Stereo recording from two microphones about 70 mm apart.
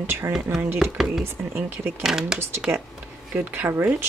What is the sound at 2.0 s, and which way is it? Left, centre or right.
Speech, centre.